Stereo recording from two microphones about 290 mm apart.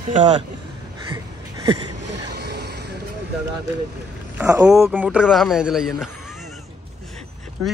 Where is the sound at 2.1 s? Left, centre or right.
Right.